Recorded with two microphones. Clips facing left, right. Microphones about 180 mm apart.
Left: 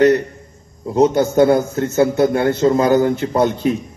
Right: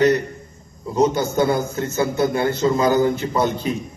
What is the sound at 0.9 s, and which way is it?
Speech, 60° left (ahead or behind).